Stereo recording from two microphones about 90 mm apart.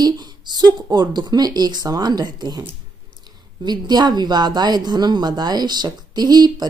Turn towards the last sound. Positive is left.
turn(degrees=-50)  # may be behind; listen again after turning